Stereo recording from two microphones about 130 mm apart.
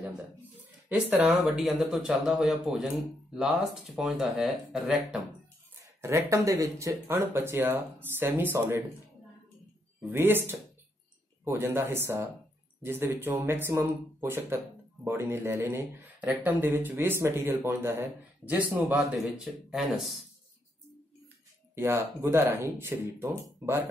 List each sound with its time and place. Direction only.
0.8 s speech: 10° right (ahead or behind)
5.9 s speech: 20° right (ahead or behind)
10.0 s speech: 15° right (ahead or behind); by 20.2 s centre (ahead or behind)
21.7 s speech: 20° right (ahead or behind)